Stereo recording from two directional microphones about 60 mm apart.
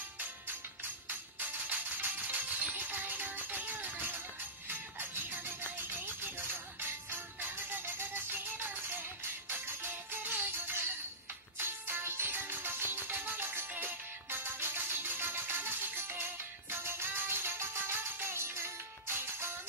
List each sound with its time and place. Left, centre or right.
1.0 s music: right
5.9 s music: right